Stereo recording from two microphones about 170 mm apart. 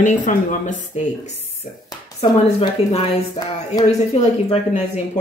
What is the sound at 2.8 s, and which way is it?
Speech, 35° left (ahead or behind).